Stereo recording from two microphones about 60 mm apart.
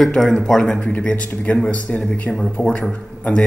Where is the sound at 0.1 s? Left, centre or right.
Centre.